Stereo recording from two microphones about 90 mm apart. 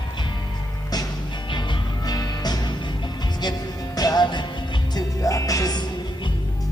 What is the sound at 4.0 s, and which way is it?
Music, 50° left (ahead or behind).